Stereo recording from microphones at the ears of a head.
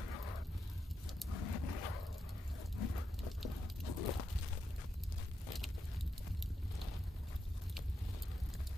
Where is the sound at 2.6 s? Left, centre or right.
Left.